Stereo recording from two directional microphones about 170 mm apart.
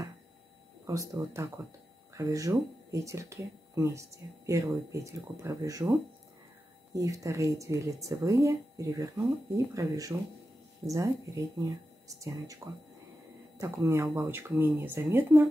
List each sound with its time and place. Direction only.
0.8 s speech: 20° right (ahead or behind)
6.9 s speech: 20° right (ahead or behind)